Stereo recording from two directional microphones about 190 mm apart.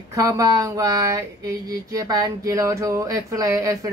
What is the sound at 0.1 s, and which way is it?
Speech, 15° right (ahead or behind).